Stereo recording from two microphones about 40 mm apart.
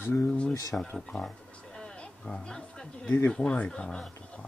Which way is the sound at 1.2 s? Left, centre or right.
Centre.